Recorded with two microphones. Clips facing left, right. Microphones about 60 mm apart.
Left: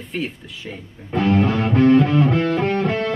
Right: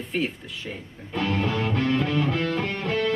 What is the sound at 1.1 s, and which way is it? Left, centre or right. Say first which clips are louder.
Music: left 7 dB; left.